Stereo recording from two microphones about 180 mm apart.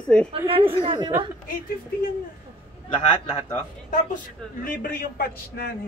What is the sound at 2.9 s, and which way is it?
Speech, 30° left (ahead or behind).